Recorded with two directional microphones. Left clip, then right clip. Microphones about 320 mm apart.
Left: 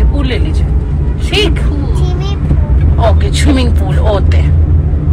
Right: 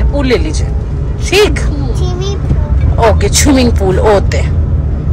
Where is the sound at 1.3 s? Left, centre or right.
Centre.